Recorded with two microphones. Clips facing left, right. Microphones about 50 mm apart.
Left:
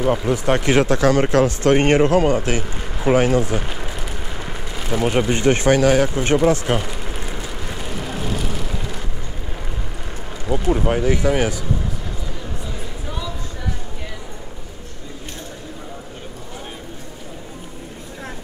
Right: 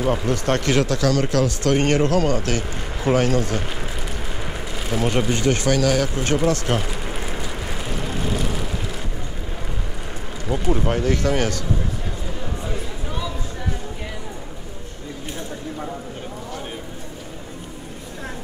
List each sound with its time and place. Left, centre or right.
0.0 s speech: centre
0.7 s speech: left; by 5.2 s centre
5.3 s speech: left
6.8 s vehicle: centre
10.4 s speech: centre